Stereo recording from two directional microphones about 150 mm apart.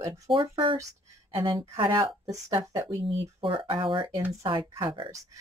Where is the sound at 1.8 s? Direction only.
30° right (ahead or behind).